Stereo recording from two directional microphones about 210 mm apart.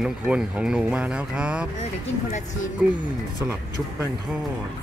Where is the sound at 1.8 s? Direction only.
35° left (ahead or behind).